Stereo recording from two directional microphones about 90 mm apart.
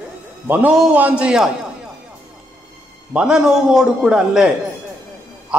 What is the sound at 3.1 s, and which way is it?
A man's voice, 5° right (ahead or behind).